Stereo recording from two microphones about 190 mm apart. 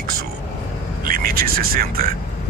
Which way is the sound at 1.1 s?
50° right (ahead or behind).